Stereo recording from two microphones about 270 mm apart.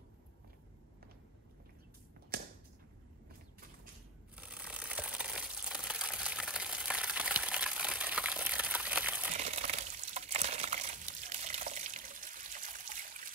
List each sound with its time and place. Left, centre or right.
4.4 s crumpling: centre
9.3 s water: right